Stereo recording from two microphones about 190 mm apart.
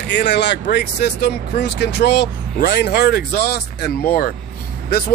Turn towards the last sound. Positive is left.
turn(degrees=55)  # may be behind; listen again after turning